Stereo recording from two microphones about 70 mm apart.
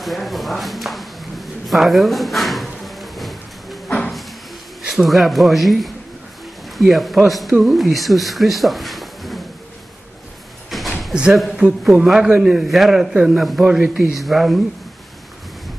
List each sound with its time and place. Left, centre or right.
0.0 s a sound: centre
3.9 s cupboard open or close: centre
4.8 s speech: centre
10.7 s a sound: centre
11.6 s a man's voice: centre
14.1 s speech: centre